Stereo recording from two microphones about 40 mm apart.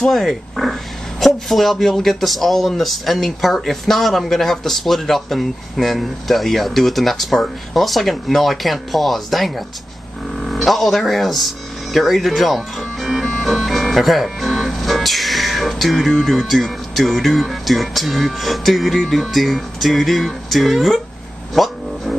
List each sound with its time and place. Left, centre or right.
0.1 s speech: centre